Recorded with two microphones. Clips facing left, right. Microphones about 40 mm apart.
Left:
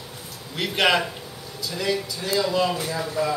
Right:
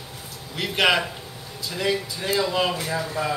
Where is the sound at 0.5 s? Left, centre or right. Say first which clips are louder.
Even; centre.